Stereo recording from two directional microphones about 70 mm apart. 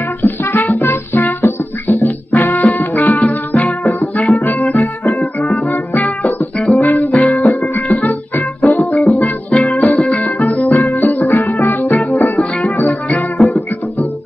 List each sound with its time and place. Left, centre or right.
0.2 s music: left